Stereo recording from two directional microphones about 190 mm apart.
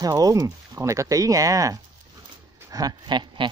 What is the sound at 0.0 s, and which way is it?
Speech, 20° right (ahead or behind).